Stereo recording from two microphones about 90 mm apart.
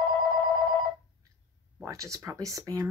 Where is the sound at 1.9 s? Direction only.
35° right (ahead or behind).